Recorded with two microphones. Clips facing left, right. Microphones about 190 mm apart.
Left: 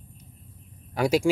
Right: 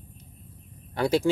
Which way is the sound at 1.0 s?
10° left (ahead or behind).